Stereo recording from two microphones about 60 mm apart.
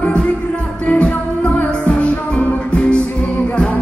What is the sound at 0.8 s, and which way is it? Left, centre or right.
Music, left.